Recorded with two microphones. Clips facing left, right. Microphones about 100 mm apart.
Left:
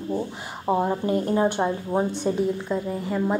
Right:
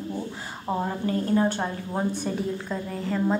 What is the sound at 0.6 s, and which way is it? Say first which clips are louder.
A woman's voice: left 5 dB; 20° left (ahead or behind).